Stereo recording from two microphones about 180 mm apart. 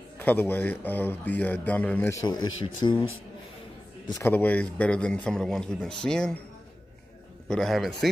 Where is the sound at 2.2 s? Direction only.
25° left (ahead or behind).